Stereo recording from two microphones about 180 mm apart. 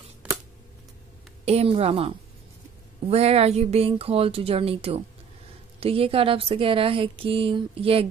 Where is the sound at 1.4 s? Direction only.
35° right (ahead or behind).